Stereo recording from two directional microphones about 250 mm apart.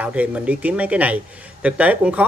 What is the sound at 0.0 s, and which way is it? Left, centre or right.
Speech, centre.